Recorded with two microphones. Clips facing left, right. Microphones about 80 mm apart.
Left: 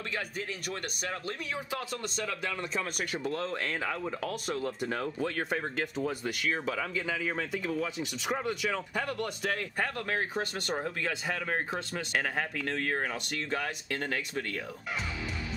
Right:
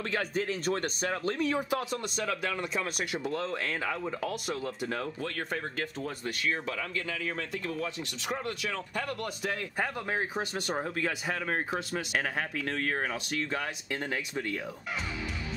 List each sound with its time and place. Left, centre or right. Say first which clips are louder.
0.1 s speech: right 7 dB; right
1.7 s speech: right 4 dB; centre
10.0 s speech: even; centre
13.5 s speech: left 1 dB; centre